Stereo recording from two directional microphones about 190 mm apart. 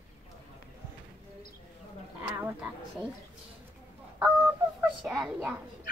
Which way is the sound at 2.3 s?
10° right (ahead or behind).